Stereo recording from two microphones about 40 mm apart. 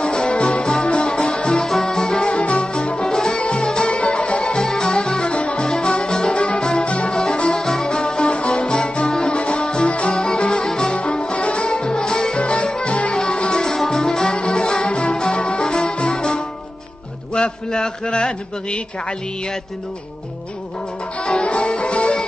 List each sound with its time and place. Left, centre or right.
0.0 s music: left
2.1 s music: left
11.0 s music: left
11.8 s music: centre
17.6 s a man's voice: centre
21.2 s music: left